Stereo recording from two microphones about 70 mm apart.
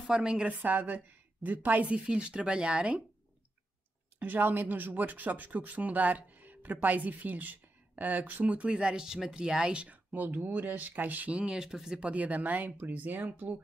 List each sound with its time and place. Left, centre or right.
0.2 s a woman's voice: centre
4.2 s speech: right